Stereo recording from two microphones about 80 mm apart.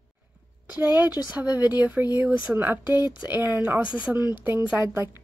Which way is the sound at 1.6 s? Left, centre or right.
Left.